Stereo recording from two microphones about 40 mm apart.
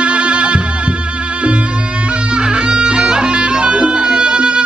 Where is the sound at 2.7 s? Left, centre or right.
Right.